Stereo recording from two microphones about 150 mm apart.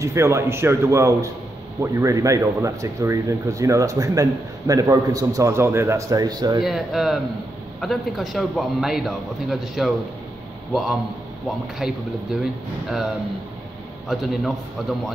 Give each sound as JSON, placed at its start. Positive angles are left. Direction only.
{"t": 0.0, "sound": "speech", "side_deg": -20}
{"t": 6.6, "sound": "a man's voice", "side_deg": 0}
{"t": 14.0, "sound": "a man's voice", "side_deg": 0}